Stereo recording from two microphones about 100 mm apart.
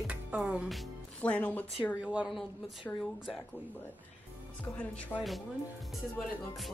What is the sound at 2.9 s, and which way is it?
Speech, 15° left (ahead or behind).